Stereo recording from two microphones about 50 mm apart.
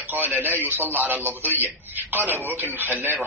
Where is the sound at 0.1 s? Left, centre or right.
Right.